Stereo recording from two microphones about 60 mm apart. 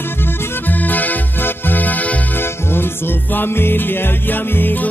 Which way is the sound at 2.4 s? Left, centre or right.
Left.